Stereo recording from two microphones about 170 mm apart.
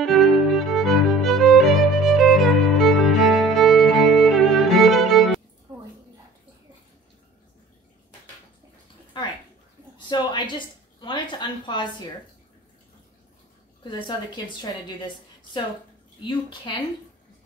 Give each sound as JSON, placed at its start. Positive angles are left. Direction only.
{"t": 0.0, "sound": "music", "side_deg": 0}
{"t": 9.9, "sound": "a sound", "side_deg": 25}
{"t": 13.8, "sound": "a woman's voice", "side_deg": 25}
{"t": 16.2, "sound": "a woman's voice", "side_deg": 30}